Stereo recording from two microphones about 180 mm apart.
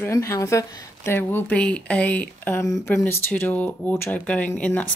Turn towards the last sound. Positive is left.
turn(degrees=10)  # may be behind; listen again after turning